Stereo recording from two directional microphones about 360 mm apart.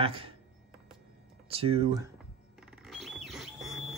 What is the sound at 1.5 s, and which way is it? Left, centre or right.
Speech, centre.